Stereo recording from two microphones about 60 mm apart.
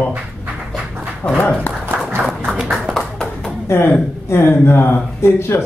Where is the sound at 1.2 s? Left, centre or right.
Left.